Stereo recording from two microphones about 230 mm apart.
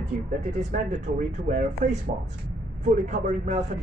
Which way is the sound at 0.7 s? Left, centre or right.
Right.